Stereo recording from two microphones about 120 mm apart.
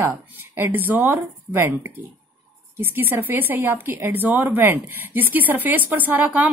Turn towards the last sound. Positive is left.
turn(degrees=-15)  # may be behind; listen again after turning